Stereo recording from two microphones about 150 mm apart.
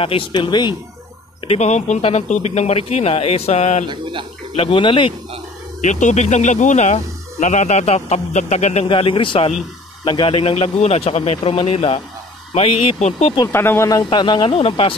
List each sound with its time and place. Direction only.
0.0 s a man's voice: 35° left (ahead or behind)
1.5 s speech: 50° left (ahead or behind)
3.8 s speech: 30° right (ahead or behind)
4.6 s a man's voice: 35° left (ahead or behind)
5.8 s a man's voice: 55° left (ahead or behind)
13.5 s speech: 15° left (ahead or behind); by 15.0 s 35° left (ahead or behind)